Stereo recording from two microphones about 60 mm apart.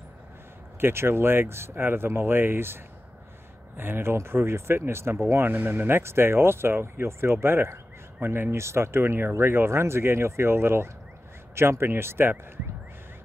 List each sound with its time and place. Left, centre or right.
0.7 s speech: right